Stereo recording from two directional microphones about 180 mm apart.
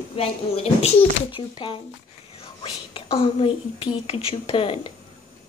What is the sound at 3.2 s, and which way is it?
Speech, 30° left (ahead or behind).